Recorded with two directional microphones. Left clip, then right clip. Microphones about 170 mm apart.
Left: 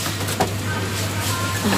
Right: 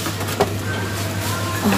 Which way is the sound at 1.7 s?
15° right (ahead or behind).